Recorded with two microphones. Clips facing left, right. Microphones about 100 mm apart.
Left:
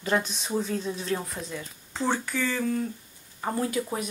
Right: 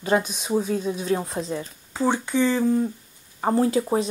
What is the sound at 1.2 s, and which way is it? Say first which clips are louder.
Speech: right 7 dB; 30° right (ahead or behind).